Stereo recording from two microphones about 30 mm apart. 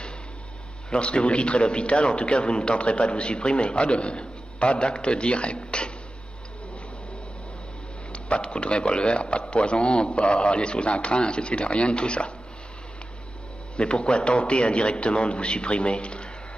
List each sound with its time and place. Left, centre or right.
0.8 s a man's voice: left
4.2 s a sound: left
4.7 s a man's voice: left
8.1 s a man's voice: left
13.7 s a man's voice: left